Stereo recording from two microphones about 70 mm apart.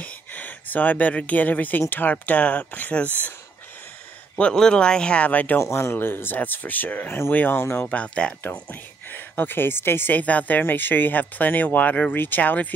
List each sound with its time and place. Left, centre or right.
0.0 s speech: left
4.4 s speech: centre
5.6 s speech: left; by 8.4 s centre
9.1 s speech: left